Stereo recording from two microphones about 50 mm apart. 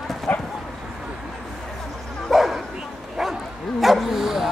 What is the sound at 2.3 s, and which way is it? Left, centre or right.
Bow-wow, centre.